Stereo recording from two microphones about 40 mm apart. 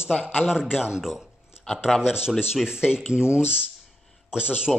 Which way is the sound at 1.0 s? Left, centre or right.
Centre.